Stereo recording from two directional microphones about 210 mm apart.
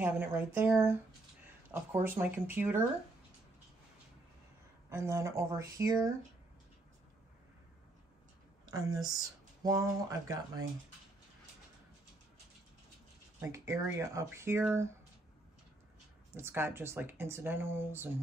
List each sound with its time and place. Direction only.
0.0 s speech: 10° right (ahead or behind)
4.8 s speech: 15° right (ahead or behind)
8.6 s a woman's voice: 15° right (ahead or behind)
13.4 s speech: 15° right (ahead or behind)
16.3 s speech: 10° right (ahead or behind)